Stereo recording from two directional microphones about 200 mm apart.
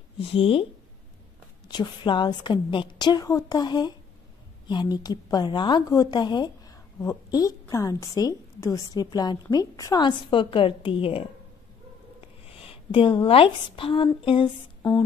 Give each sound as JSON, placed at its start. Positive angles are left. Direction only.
{"t": 0.2, "sound": "a woman's voice", "side_deg": 30}
{"t": 1.7, "sound": "a woman's voice", "side_deg": 20}